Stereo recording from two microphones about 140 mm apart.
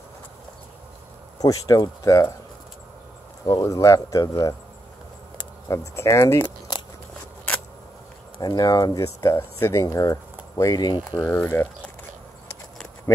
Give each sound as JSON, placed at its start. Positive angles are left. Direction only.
{"t": 1.4, "sound": "speech", "side_deg": 25}
{"t": 3.4, "sound": "speech", "side_deg": 25}
{"t": 8.4, "sound": "speech", "side_deg": 30}
{"t": 11.2, "sound": "speech", "side_deg": 15}